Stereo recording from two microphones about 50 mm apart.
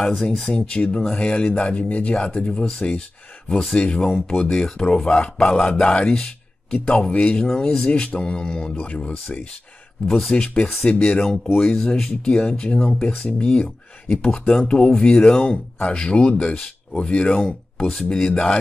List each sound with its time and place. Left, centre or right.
0.0 s speech: centre
0.6 s speech: left
10.0 s speech: centre